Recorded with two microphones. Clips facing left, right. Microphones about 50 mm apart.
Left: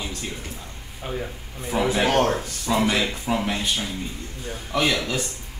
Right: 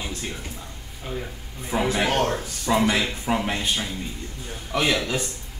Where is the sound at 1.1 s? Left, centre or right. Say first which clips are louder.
Left 1 dB; centre.